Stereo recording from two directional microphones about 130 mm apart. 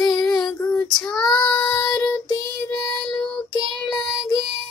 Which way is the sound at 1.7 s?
30° left (ahead or behind).